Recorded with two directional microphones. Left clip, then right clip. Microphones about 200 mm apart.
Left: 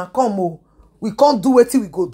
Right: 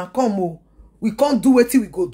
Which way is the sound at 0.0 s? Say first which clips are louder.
Left 3 dB; centre (ahead or behind).